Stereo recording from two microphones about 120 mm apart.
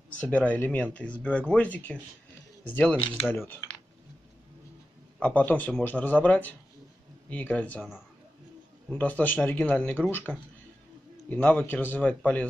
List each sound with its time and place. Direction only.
0.3 s speech: 10° left (ahead or behind)
5.2 s speech: 10° left (ahead or behind)
8.9 s speech: 15° left (ahead or behind)